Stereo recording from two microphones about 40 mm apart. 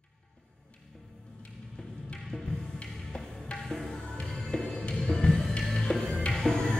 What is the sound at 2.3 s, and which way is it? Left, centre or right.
Music, left.